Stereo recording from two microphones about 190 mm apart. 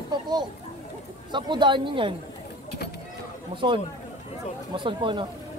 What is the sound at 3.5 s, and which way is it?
Speech, 25° right (ahead or behind).